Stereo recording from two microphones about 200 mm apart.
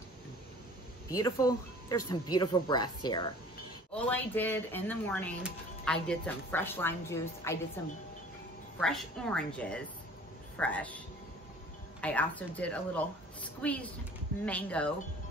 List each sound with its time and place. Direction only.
1.1 s speech: 20° left (ahead or behind)
3.9 s speech: 10° left (ahead or behind)
8.7 s a woman's voice: centre (ahead or behind)
12.0 s speech: 5° left (ahead or behind)